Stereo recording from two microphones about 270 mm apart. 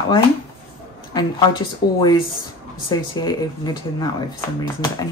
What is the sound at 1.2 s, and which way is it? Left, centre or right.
Speech, centre.